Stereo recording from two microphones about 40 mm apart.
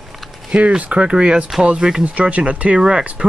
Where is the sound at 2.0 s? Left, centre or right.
Right.